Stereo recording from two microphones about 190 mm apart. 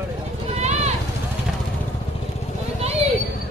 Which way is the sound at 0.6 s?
35° right (ahead or behind).